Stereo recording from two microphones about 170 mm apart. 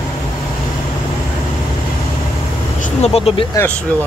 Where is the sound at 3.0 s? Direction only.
35° left (ahead or behind).